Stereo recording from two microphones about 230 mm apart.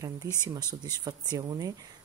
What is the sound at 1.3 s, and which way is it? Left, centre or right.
Speech, centre.